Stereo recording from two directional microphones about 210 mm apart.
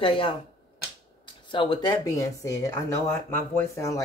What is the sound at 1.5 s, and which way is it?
Speech, 20° left (ahead or behind).